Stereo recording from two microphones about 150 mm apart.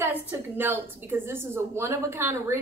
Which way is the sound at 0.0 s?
15° right (ahead or behind).